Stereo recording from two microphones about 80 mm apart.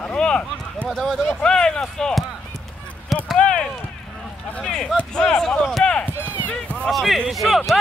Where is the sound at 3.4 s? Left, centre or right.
Centre.